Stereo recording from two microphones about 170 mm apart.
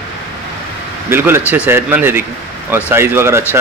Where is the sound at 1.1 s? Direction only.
15° right (ahead or behind).